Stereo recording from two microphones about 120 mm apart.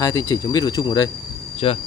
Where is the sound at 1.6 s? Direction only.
50° left (ahead or behind).